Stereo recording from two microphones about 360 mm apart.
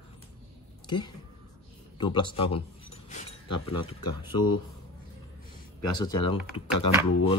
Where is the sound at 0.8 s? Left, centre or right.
Centre.